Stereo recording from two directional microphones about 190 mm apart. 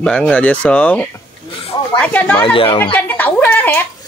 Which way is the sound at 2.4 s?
30° left (ahead or behind).